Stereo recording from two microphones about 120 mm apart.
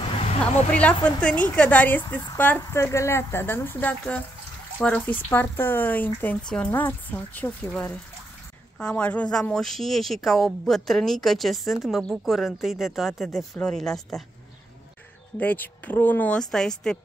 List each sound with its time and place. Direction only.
0.0 s a sound: 50° left (ahead or behind)
0.7 s speech: 10° left (ahead or behind)
8.7 s speech: 10° left (ahead or behind)
15.3 s speech: 15° left (ahead or behind)